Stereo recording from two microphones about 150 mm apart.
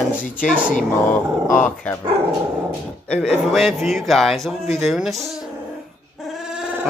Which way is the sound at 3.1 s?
5° left (ahead or behind).